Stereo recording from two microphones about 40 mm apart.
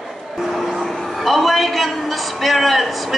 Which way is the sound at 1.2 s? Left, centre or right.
Centre.